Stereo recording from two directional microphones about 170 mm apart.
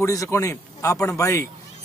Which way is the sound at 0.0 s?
20° left (ahead or behind).